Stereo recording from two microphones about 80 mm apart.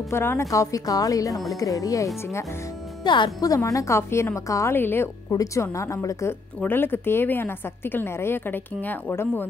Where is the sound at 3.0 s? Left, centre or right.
Left.